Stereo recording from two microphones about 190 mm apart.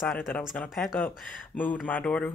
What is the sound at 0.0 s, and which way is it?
Speech, centre (ahead or behind).